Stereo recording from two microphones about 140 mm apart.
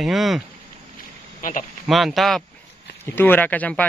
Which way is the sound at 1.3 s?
70° left (ahead or behind).